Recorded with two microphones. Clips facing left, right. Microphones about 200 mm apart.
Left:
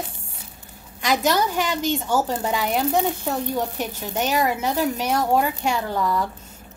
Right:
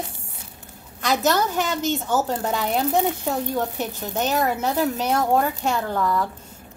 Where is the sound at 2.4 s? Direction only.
10° left (ahead or behind).